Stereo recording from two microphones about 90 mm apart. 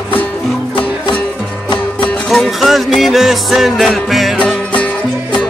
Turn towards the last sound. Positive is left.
turn(degrees=15)  # may be behind; listen again after turning